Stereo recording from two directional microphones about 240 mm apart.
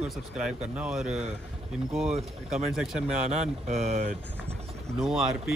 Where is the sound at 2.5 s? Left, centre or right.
Centre.